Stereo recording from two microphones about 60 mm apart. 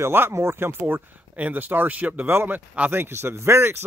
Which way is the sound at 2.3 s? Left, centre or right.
Right.